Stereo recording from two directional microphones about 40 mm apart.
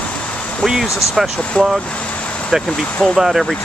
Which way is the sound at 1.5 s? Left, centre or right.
Left.